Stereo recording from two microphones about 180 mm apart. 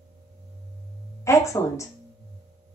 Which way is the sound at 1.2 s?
15° left (ahead or behind).